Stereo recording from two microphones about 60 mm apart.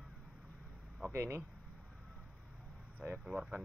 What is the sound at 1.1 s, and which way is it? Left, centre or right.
Speech, right.